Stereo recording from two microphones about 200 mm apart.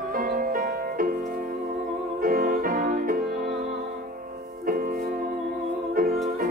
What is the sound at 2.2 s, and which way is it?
Music, 45° right (ahead or behind).